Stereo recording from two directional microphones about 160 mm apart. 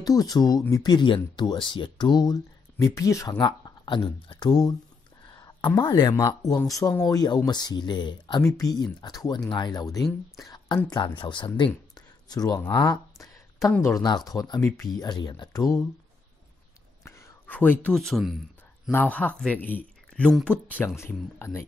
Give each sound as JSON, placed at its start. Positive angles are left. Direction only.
{"t": 0.0, "sound": "speech", "side_deg": 25}
{"t": 5.8, "sound": "speech", "side_deg": 25}
{"t": 11.9, "sound": "a sound", "side_deg": 25}
{"t": 13.8, "sound": "speech", "side_deg": 25}
{"t": 17.0, "sound": "speech", "side_deg": 10}
{"t": 18.9, "sound": "speech", "side_deg": 10}